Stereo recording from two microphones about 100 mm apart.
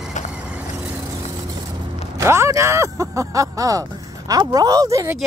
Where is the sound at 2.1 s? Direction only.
30° right (ahead or behind).